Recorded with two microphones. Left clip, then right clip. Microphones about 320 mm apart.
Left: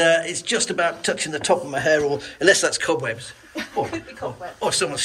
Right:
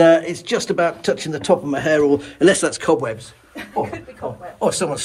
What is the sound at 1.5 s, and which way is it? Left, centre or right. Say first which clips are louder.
Speech: right 3 dB; right.